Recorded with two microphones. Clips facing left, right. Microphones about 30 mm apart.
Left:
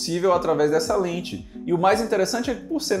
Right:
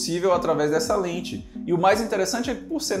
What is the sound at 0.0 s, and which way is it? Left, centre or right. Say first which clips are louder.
Speech: left 1 dB; centre.